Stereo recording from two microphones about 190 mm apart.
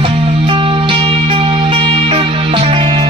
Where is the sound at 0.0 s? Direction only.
25° right (ahead or behind).